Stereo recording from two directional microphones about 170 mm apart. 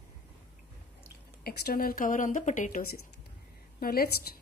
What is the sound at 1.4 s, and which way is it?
A woman's voice, 60° left (ahead or behind).